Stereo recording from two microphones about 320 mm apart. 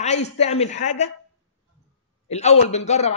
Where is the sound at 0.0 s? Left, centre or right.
Left.